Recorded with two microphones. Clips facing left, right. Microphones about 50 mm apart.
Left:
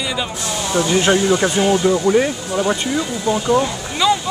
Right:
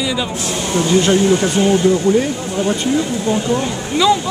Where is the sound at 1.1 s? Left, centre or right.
Left.